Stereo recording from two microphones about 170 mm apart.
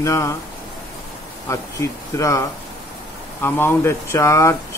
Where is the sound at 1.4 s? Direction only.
15° left (ahead or behind).